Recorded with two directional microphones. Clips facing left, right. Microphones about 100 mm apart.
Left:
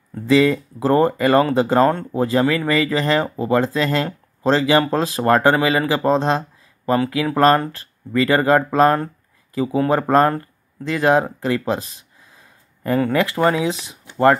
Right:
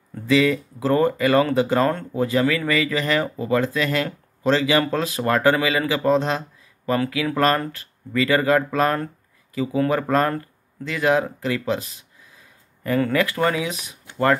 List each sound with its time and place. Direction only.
0.3 s speech: 35° left (ahead or behind)